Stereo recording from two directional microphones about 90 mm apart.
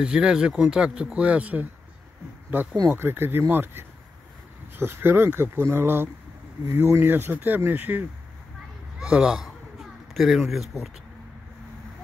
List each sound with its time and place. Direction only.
0.0 s speech: 10° right (ahead or behind)
2.9 s speech: 25° right (ahead or behind)
9.0 s speech: 10° right (ahead or behind)